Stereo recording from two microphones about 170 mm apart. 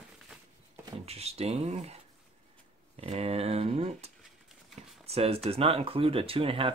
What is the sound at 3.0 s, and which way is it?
Speech, 35° right (ahead or behind).